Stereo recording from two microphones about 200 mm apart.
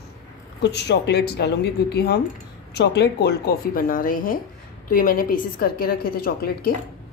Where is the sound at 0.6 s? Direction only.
60° left (ahead or behind).